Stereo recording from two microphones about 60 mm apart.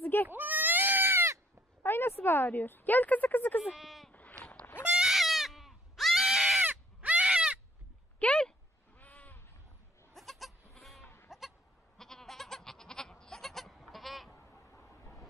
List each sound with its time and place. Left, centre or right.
0.0 s goat: left
0.3 s goat: right
1.8 s a woman's voice: left
3.7 s speech: centre
4.1 s bleat: left
4.8 s goat: centre
6.6 s crow: right
8.2 s a sound: centre
8.9 s sheep: left
10.1 s goat: centre
11.2 s bleat: centre
12.0 s goat: centre